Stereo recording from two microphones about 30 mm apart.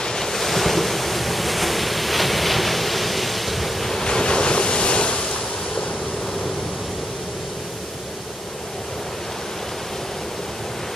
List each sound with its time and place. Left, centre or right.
0.0 s waves: centre
3.9 s waves: left